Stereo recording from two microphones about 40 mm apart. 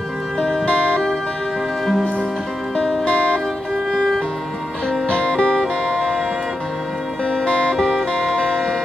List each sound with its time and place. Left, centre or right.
0.7 s music: left
5.0 s music: left
7.2 s music: left